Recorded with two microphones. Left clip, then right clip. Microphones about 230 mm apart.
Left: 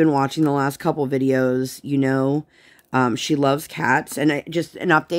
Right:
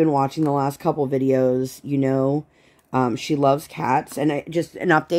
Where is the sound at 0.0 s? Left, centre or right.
Left.